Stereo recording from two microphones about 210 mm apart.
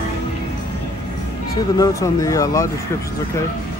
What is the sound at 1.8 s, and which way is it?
Speech, 15° left (ahead or behind).